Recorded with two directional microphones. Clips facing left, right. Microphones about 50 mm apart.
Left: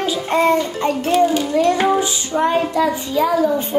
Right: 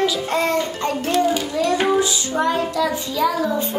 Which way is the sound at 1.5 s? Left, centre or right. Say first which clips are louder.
Left 3 dB; left.